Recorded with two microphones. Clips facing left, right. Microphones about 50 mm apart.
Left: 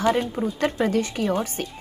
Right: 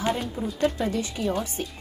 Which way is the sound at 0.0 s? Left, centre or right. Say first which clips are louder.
Left 5 dB; left.